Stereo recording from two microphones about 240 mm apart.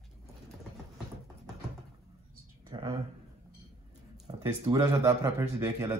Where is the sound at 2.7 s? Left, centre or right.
Right.